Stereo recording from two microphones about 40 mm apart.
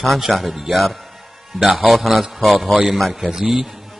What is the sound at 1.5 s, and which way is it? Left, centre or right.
Speech, centre.